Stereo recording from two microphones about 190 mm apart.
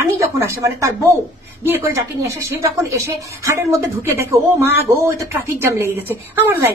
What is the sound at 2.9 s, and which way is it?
A woman's voice, 15° right (ahead or behind).